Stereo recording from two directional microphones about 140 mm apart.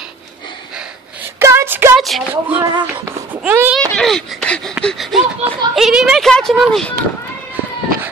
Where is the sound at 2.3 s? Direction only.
15° right (ahead or behind).